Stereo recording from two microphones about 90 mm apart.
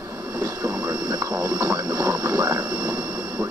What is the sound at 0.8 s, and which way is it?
Speech, 45° right (ahead or behind).